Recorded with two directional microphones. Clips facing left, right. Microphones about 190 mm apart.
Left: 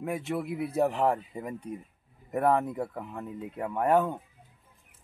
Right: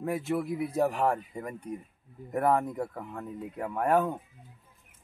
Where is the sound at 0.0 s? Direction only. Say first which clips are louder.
Right 2 dB; centre (ahead or behind).